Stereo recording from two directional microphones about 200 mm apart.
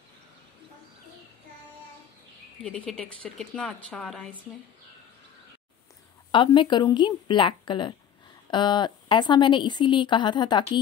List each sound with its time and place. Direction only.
2.6 s speech: 5° left (ahead or behind)
6.3 s speech: 25° left (ahead or behind)